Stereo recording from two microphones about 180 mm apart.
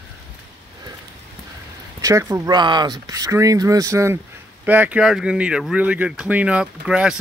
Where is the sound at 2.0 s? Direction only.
15° right (ahead or behind).